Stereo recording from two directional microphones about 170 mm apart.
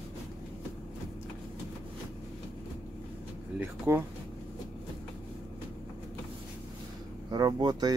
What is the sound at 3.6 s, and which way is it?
Speech, 15° right (ahead or behind).